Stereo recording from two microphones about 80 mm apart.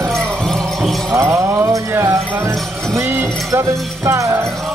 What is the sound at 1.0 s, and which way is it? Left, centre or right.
Music, right.